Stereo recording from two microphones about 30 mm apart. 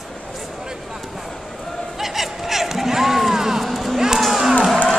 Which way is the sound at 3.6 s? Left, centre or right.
Centre.